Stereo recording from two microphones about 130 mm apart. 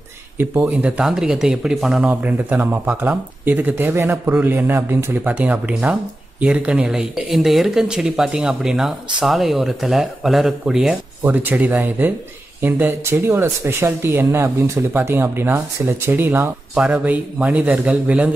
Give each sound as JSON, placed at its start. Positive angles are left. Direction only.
{"t": 0.4, "sound": "speech", "side_deg": -15}